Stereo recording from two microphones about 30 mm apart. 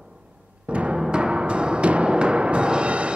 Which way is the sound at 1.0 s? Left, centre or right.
Right.